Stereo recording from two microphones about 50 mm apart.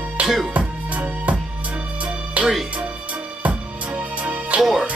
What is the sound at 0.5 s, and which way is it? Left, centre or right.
Music, right.